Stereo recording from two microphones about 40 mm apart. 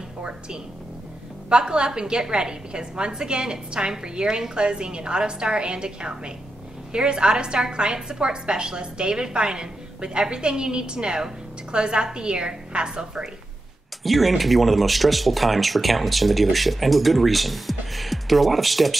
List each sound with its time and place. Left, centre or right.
1.5 s a woman's voice: right
14.0 s speech: centre